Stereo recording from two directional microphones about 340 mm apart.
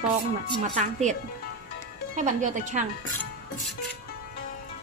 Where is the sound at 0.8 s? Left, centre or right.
Right.